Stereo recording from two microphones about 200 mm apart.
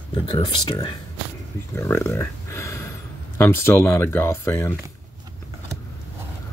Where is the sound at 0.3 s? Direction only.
25° left (ahead or behind).